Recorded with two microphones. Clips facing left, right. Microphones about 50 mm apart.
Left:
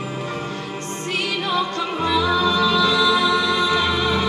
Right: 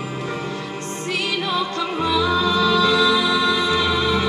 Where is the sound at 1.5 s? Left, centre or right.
Left.